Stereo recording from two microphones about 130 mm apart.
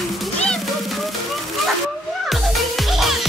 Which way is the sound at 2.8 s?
Centre (ahead or behind).